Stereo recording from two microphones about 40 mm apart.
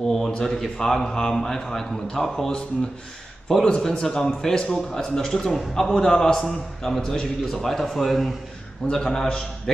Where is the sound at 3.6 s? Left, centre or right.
Centre.